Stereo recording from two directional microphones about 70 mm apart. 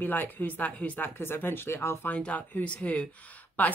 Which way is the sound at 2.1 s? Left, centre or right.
Left.